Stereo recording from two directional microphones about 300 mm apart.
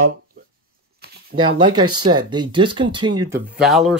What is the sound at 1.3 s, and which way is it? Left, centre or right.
Speech, centre.